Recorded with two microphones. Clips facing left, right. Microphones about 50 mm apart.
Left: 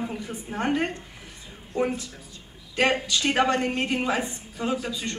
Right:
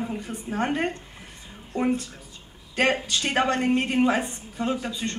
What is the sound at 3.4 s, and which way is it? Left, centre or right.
A woman's voice, right.